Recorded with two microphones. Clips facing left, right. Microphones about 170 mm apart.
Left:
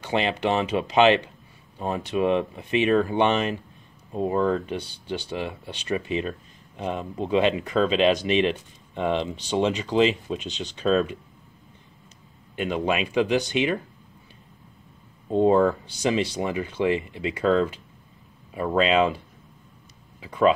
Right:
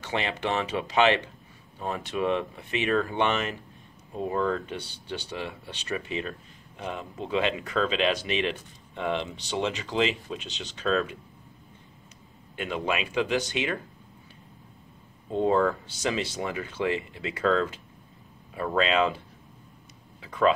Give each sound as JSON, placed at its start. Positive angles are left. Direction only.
{"t": 0.0, "sound": "speech", "side_deg": 15}
{"t": 5.9, "sound": "speech", "side_deg": 20}
{"t": 12.5, "sound": "speech", "side_deg": 20}
{"t": 15.3, "sound": "speech", "side_deg": 20}